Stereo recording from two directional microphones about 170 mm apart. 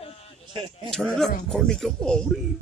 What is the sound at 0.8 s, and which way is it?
Speech, centre (ahead or behind).